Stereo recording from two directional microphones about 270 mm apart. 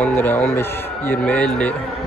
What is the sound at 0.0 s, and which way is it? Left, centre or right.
Speech, centre.